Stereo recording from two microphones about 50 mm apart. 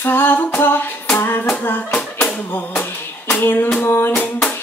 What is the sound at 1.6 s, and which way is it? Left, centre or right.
Female singing, left.